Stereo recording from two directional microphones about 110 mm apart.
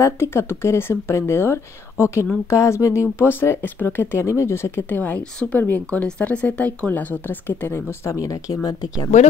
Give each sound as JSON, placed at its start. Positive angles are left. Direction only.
{"t": 0.0, "sound": "speech", "side_deg": 20}